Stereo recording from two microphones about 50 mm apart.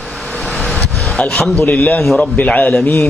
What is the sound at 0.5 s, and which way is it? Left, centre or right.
Vehicle, centre.